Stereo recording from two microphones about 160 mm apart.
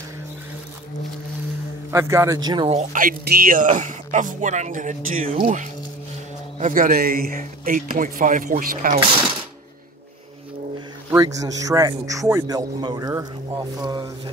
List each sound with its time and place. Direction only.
1.9 s a man's voice: 20° right (ahead or behind)
2.7 s speech: 55° right (ahead or behind)
6.6 s a man's voice: 60° right (ahead or behind)
11.1 s a man's voice: 20° right (ahead or behind)